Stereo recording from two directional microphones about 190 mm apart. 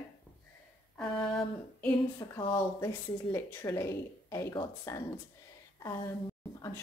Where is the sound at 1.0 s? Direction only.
Centre (ahead or behind).